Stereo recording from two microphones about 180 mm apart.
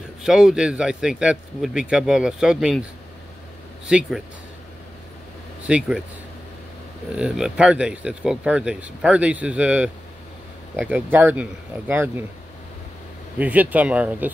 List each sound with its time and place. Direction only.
0.2 s speech: 5° right (ahead or behind)
5.7 s speech: 5° right (ahead or behind)
7.2 s speech: 5° right (ahead or behind)
13.4 s speech: 10° right (ahead or behind)